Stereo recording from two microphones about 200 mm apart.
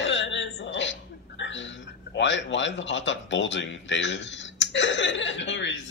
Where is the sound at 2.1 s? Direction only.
65° left (ahead or behind).